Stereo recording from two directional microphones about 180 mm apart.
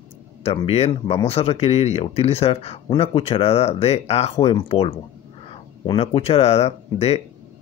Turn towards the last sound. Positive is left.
turn(degrees=35)  # may be behind; listen again after turning